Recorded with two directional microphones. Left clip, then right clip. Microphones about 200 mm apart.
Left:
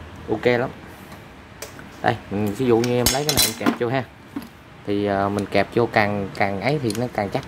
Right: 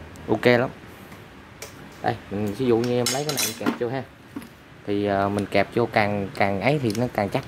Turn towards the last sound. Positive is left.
turn(degrees=-10)  # may be behind; listen again after turning